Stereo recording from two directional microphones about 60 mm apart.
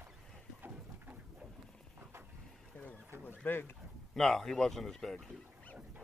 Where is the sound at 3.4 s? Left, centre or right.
Left.